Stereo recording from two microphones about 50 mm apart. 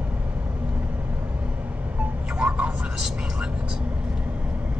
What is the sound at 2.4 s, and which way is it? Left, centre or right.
Vehicle, right.